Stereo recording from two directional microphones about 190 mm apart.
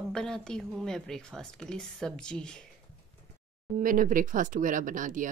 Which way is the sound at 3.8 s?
45° right (ahead or behind).